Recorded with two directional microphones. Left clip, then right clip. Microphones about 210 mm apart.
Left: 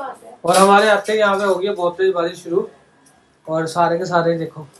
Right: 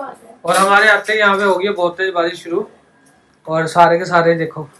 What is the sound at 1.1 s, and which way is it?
Speech, 20° left (ahead or behind).